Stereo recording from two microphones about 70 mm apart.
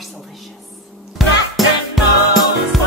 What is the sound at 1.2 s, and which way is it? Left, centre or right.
Music, centre.